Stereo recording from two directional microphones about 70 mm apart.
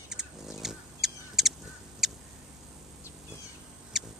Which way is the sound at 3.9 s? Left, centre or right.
Centre.